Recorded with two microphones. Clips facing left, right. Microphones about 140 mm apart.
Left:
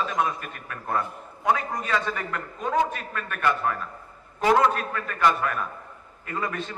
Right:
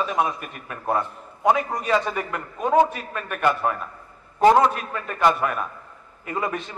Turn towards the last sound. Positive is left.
turn(degrees=-20)  # may be behind; listen again after turning